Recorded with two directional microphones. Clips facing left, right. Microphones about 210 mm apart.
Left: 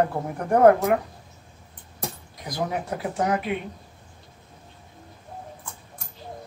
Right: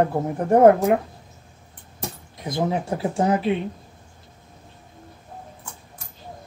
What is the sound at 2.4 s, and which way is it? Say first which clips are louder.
Speech: right 4 dB; 25° right (ahead or behind).